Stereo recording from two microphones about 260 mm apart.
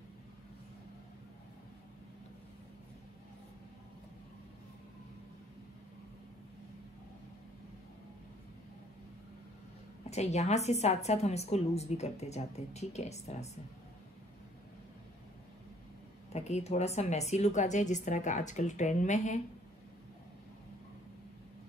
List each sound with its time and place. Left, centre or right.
10.0 s a woman's voice: left
16.3 s a woman's voice: left